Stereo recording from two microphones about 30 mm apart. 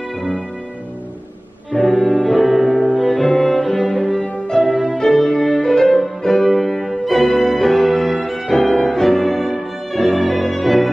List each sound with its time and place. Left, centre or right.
1.8 s music: centre
4.5 s music: centre
6.5 s music: centre
8.5 s music: centre